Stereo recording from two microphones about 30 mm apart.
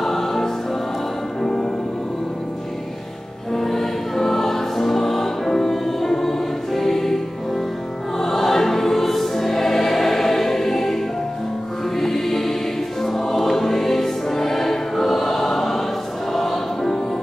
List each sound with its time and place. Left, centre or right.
0.0 s music: centre
3.5 s music: centre
8.2 s choir: centre
12.0 s music: centre